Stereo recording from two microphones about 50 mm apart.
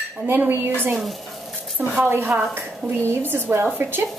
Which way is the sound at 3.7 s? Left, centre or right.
Right.